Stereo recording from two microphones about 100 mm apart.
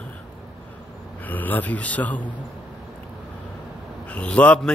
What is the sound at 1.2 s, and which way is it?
Mantra, 15° left (ahead or behind).